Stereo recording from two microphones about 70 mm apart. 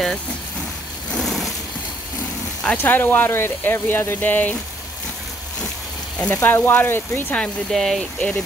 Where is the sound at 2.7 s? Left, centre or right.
Left.